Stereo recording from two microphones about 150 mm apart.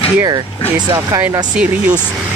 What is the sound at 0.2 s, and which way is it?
Speech, 30° right (ahead or behind).